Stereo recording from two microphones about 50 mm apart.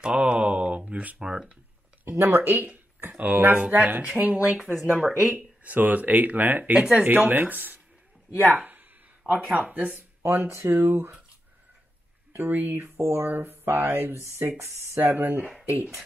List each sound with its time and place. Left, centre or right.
0.0 s a sound: right
2.2 s speech: right
10.2 s speech: right
12.3 s speech: right
14.4 s speech: right
14.8 s speech: right